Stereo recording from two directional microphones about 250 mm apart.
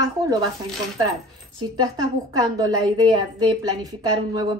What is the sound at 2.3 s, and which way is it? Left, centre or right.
A woman's voice, centre.